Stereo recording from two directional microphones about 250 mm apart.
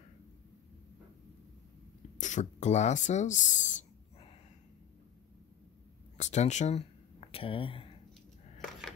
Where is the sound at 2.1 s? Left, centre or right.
Left.